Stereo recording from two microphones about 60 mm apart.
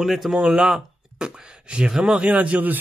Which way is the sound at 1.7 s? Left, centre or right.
Centre.